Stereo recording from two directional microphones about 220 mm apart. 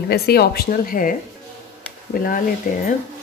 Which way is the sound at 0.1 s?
45° left (ahead or behind).